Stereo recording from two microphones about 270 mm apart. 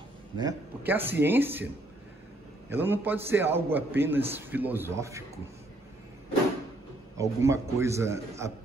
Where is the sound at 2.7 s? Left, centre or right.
Centre.